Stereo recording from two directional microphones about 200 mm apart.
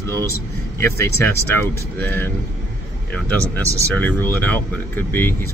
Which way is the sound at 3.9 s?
10° left (ahead or behind).